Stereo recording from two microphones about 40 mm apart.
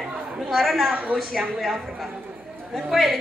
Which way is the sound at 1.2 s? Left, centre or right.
Centre.